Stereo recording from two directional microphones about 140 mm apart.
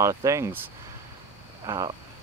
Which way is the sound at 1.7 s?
35° right (ahead or behind).